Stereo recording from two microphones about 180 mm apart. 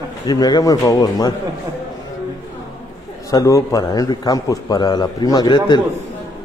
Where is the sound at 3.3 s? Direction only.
20° left (ahead or behind).